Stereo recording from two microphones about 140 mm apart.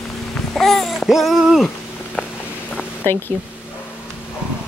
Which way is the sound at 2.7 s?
15° left (ahead or behind).